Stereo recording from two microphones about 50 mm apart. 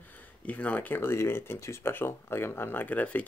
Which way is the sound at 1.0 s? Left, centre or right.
Left.